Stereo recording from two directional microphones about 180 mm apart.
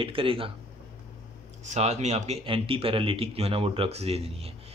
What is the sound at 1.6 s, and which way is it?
A man's voice, 40° right (ahead or behind).